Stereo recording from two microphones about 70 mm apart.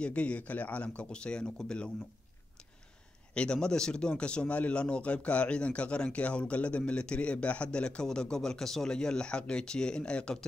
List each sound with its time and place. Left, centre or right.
0.0 s speech: centre
3.3 s speech: centre